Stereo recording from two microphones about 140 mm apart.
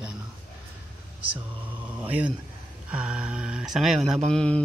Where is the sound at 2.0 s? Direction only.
10° right (ahead or behind); by 4.6 s 5° left (ahead or behind).